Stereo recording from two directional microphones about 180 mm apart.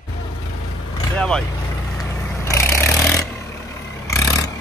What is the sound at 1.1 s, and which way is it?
Speech, 5° left (ahead or behind).